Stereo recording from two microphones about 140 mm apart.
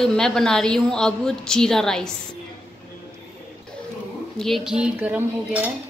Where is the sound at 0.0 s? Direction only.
5° left (ahead or behind).